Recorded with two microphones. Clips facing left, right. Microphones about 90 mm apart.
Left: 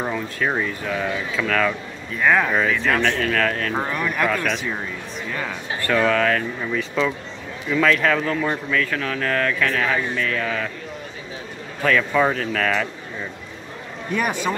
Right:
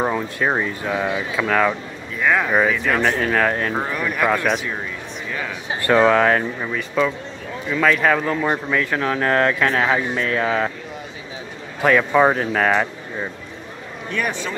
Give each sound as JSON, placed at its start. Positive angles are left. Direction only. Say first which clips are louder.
{"t": 0.0, "sound": "speech", "louder": "right 3 dB", "side_deg": -25}
{"t": 2.1, "sound": "speech", "louder": "left 1 dB", "side_deg": 0}
{"t": 2.5, "sound": "speech", "louder": "right 2 dB", "side_deg": -10}
{"t": 3.7, "sound": "speech", "louder": "even", "side_deg": -5}
{"t": 5.7, "sound": "speech", "louder": "right 5 dB", "side_deg": -20}
{"t": 6.7, "sound": "speech", "louder": "right 1 dB", "side_deg": 0}
{"t": 8.5, "sound": "speech", "louder": "right 2 dB", "side_deg": -25}
{"t": 12.1, "sound": "speech", "louder": "right 4 dB", "side_deg": -25}
{"t": 14.1, "sound": "speech", "louder": "left 2 dB", "side_deg": 10}